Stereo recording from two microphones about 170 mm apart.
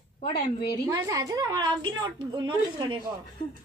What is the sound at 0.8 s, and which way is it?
A woman's voice, 20° right (ahead or behind).